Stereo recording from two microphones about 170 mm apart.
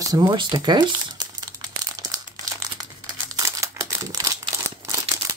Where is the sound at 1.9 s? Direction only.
20° right (ahead or behind).